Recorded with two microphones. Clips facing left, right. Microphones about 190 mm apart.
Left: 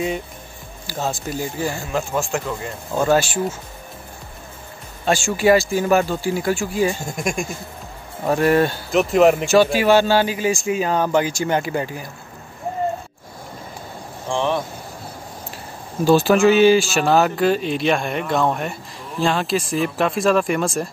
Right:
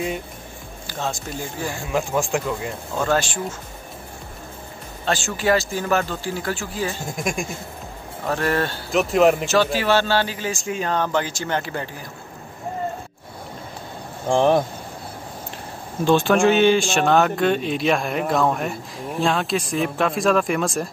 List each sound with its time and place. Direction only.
0.8 s speech: 5° left (ahead or behind)
1.9 s speech: 15° right (ahead or behind)
3.0 s speech: 10° left (ahead or behind)
5.0 s speech: 10° left (ahead or behind)
7.1 s speech: centre (ahead or behind)
8.3 s speech: 15° left (ahead or behind)
8.9 s speech: centre (ahead or behind)
9.5 s speech: 10° left (ahead or behind)
14.3 s speech: 40° right (ahead or behind)
16.0 s speech: 5° left (ahead or behind)